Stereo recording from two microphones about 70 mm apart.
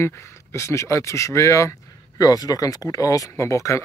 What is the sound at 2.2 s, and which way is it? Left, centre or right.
Speech, left.